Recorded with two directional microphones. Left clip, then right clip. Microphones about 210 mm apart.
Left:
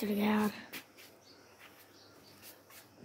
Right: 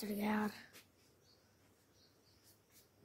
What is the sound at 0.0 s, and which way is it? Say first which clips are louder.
Speech: left 7 dB; 10° right (ahead or behind).